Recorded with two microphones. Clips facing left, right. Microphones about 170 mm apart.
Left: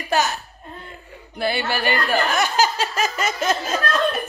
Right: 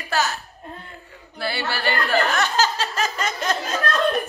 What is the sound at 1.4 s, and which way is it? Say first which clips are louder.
Speech: left 3 dB; 20° left (ahead or behind).